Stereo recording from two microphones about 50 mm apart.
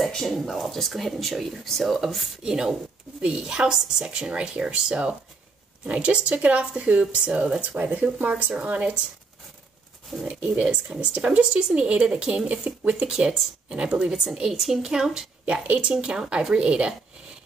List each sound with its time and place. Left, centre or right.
0.0 s speech: centre
2.4 s a woman's voice: centre
10.2 s speech: centre
14.5 s a woman's voice: centre
15.7 s speech: right